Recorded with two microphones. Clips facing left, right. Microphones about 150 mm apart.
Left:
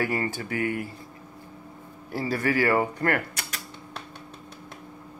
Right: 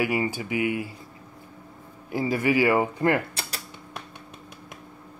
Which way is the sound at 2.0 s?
15° right (ahead or behind).